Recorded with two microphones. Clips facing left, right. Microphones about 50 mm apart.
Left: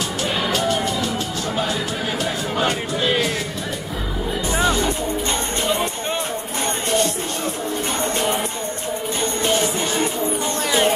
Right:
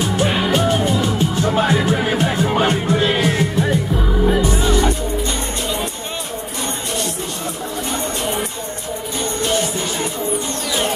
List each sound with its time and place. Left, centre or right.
0.0 s music: right
4.5 s music: left